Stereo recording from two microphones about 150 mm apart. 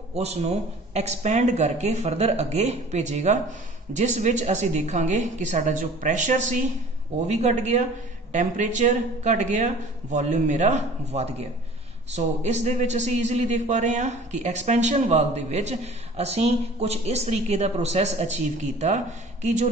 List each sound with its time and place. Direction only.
0.1 s a man's voice: 45° right (ahead or behind)
19.4 s a man's voice: 50° right (ahead or behind)